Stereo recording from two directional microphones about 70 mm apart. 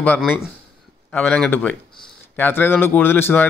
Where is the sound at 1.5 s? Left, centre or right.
Centre.